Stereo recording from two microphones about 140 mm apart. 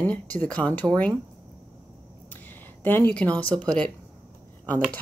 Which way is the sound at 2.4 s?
15° left (ahead or behind).